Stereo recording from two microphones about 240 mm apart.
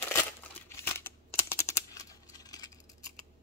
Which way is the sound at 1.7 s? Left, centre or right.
Centre.